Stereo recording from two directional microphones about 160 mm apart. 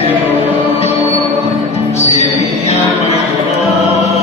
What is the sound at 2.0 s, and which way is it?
Music, 40° left (ahead or behind).